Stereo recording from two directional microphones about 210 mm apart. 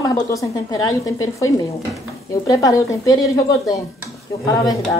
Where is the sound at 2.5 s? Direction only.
15° left (ahead or behind).